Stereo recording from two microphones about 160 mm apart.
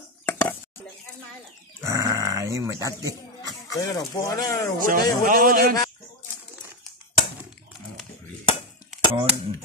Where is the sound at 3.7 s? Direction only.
25° left (ahead or behind).